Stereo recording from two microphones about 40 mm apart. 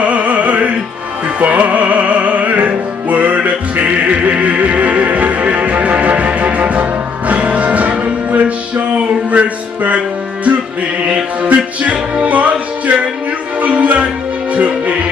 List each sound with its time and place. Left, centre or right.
0.0 s music: right